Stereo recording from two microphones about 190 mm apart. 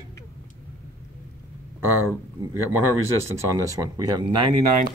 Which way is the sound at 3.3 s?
20° right (ahead or behind).